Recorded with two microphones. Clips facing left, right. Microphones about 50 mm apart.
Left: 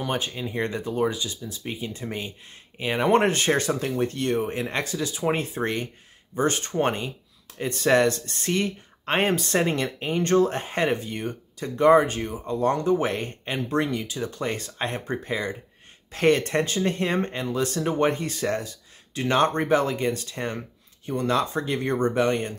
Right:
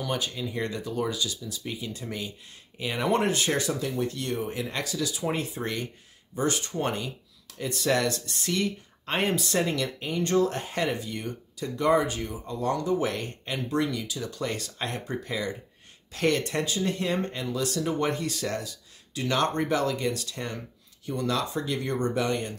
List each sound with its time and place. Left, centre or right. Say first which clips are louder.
0.0 s speech: left 2 dB; left